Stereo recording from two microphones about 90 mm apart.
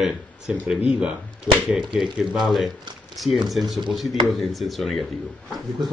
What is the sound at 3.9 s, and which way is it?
Speech, centre (ahead or behind).